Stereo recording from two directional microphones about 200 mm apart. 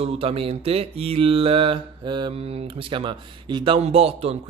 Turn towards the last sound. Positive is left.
turn(degrees=-30)  # may be behind; listen again after turning